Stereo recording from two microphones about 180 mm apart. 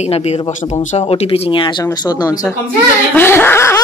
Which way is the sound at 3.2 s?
10° left (ahead or behind).